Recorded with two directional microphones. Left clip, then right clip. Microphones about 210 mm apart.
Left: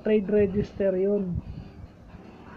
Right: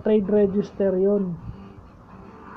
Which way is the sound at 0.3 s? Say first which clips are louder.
Right 3 dB; 20° right (ahead or behind).